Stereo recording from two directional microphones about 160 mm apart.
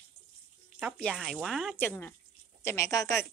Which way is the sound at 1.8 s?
15° left (ahead or behind).